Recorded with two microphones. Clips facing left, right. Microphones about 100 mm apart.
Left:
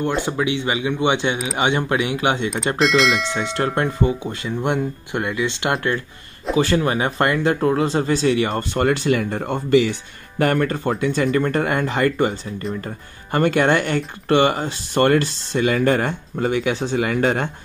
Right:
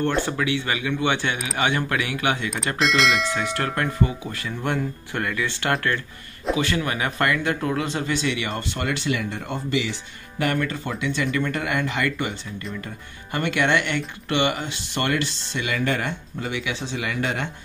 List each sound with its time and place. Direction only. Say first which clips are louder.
0.0 s speech: left 2 dB; 15° left (ahead or behind)
2.8 s speech: left 3 dB; centre (ahead or behind)
3.3 s speech: left 4 dB; 25° left (ahead or behind)
6.5 s speech: left 6 dB; 35° left (ahead or behind)